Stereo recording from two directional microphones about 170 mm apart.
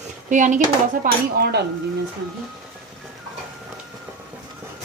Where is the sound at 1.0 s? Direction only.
55° right (ahead or behind).